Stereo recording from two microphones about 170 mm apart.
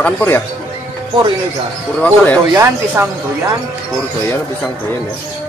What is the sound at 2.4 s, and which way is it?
Speech, 15° right (ahead or behind).